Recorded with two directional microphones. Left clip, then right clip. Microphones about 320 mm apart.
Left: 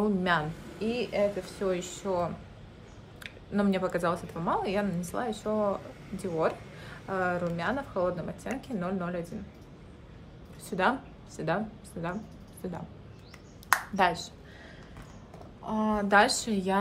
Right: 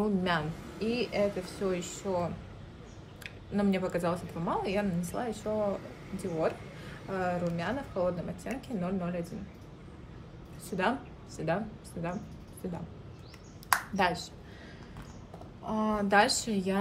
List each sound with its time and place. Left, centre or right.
0.0 s speech: centre
10.8 s a woman's voice: centre
13.7 s a sound: centre
15.6 s speech: centre